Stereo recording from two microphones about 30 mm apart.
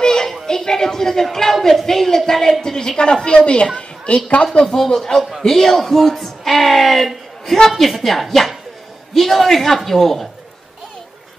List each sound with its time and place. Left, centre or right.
0.0 s music: left
0.5 s a woman's voice: centre; by 3.6 s left
3.7 s a sound: left
4.9 s a woman's voice: centre